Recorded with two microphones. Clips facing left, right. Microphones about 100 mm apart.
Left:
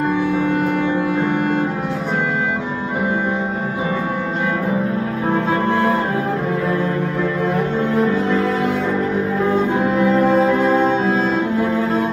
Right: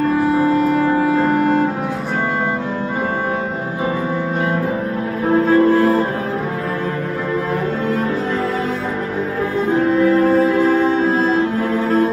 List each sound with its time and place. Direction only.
10.3 s music: 25° left (ahead or behind)